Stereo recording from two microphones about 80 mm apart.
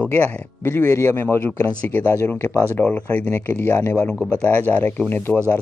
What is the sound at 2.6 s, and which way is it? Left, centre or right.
Speech, left.